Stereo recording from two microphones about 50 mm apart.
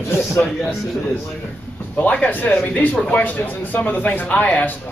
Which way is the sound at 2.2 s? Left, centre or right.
Left.